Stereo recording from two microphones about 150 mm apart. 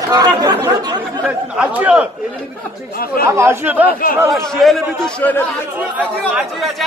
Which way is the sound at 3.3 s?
15° right (ahead or behind).